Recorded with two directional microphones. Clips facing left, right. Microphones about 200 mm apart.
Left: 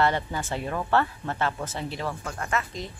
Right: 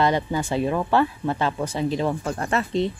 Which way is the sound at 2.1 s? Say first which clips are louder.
Right 6 dB; 30° right (ahead or behind).